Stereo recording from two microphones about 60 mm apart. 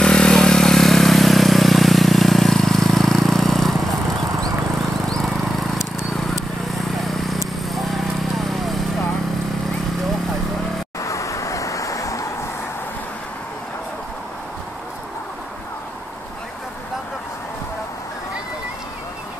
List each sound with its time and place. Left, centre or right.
0.0 s vehicle: centre
5.2 s a sound: centre
6.1 s vehicle: centre
11.0 s vehicle: left